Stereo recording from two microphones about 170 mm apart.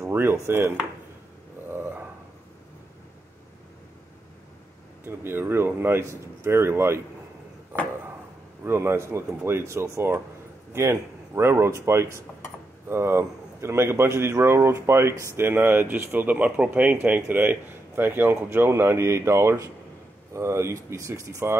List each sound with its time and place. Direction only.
0.0 s chopping: 15° right (ahead or behind)
5.0 s a man's voice: 15° right (ahead or behind)
8.6 s a man's voice: 15° right (ahead or behind)